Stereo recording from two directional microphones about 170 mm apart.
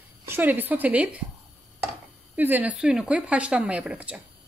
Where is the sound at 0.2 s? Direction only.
10° right (ahead or behind).